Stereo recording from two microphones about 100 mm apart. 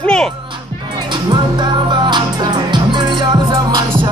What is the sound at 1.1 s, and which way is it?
Music, 50° right (ahead or behind).